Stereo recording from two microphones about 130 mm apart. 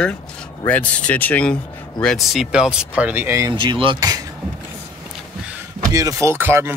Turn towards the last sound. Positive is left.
turn(degrees=-15)  # may be behind; listen again after turning